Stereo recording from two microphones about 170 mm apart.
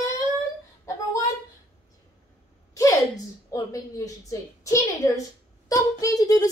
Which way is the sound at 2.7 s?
20° left (ahead or behind).